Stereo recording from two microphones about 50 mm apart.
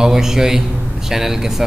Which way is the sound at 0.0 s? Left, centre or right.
Centre.